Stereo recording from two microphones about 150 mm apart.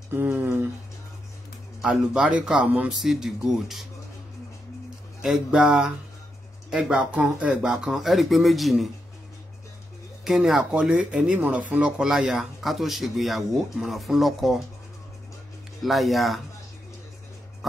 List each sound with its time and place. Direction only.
0.1 s a sound: 15° right (ahead or behind)
1.8 s speech: 5° right (ahead or behind)
5.2 s speech: 5° right (ahead or behind)
10.2 s speech: centre (ahead or behind)
15.8 s speech: centre (ahead or behind)